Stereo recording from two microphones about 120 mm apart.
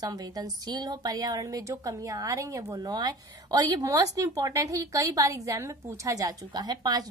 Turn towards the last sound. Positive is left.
turn(degrees=-35)  # may be behind; listen again after turning